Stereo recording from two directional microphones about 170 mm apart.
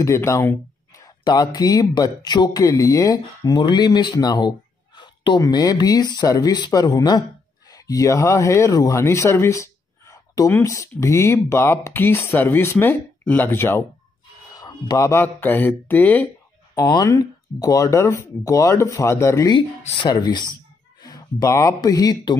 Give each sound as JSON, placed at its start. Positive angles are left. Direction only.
{"t": 0.0, "sound": "speech", "side_deg": 15}
{"t": 19.8, "sound": "speech", "side_deg": 40}
{"t": 20.1, "sound": "speech", "side_deg": 25}